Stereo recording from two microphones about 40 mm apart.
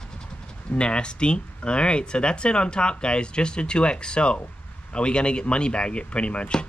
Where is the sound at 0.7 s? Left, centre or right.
Left.